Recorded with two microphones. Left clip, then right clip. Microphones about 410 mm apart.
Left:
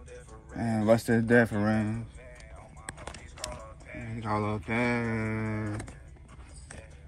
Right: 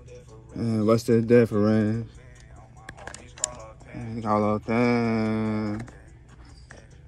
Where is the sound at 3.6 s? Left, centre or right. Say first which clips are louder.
Right 2 dB; centre.